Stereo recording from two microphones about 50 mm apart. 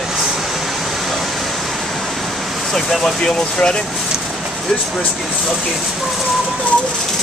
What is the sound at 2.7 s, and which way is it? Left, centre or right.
Speech, centre.